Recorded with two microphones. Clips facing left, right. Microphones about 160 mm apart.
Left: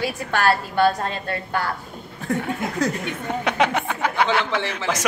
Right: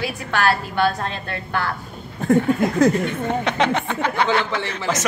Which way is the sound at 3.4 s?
10° left (ahead or behind).